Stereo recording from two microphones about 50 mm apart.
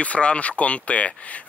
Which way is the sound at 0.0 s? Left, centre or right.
Left.